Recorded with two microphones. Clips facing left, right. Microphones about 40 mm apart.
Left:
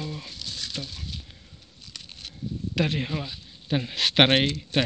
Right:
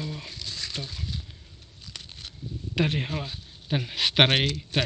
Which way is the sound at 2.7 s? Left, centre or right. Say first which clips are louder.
Even; right.